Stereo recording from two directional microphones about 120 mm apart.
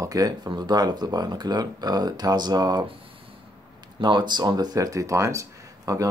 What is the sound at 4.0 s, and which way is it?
Speech, 40° right (ahead or behind).